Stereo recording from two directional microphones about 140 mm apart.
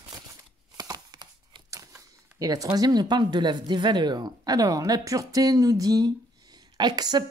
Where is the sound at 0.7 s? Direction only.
30° right (ahead or behind).